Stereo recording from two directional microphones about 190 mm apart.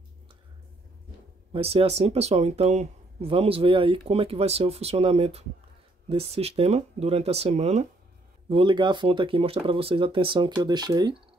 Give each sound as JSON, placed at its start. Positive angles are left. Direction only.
{"t": 1.5, "sound": "speech", "side_deg": -30}